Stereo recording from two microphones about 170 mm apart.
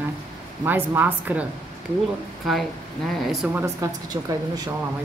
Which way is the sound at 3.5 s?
15° right (ahead or behind).